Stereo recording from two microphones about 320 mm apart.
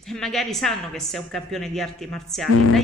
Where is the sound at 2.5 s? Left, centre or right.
Left.